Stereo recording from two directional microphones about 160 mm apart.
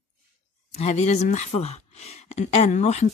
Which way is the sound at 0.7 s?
45° left (ahead or behind).